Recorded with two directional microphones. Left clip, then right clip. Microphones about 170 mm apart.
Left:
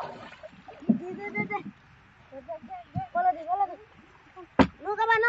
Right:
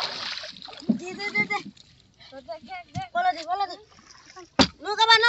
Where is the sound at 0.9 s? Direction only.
15° right (ahead or behind).